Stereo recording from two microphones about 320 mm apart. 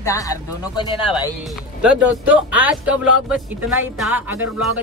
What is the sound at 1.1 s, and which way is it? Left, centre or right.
Speech, centre.